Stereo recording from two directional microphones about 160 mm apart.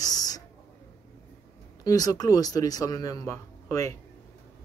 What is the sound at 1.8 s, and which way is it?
A man's voice, 25° left (ahead or behind).